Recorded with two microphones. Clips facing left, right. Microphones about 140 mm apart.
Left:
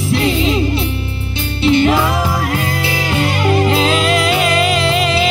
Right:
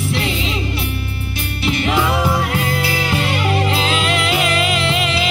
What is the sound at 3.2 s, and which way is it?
Music, 35° left (ahead or behind).